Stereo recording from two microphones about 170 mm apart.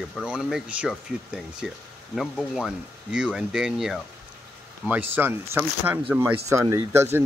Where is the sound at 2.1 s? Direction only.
Centre (ahead or behind).